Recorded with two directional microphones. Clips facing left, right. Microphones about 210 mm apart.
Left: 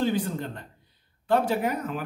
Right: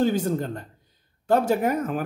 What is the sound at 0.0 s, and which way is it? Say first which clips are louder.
A man's voice: right 4 dB; 45° right (ahead or behind).